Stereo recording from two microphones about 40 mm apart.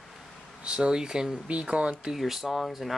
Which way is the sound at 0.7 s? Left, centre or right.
Right.